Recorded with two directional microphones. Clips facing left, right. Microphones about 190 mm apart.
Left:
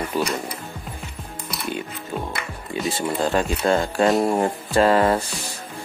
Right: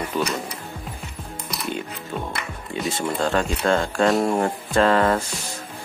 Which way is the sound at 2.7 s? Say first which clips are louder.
Left 1 dB; 5° left (ahead or behind).